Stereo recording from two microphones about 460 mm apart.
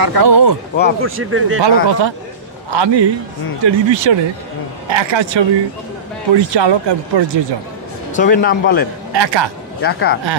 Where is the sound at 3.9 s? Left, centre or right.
Right.